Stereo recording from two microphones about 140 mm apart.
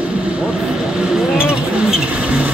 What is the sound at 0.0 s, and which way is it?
Vehicle, 10° right (ahead or behind).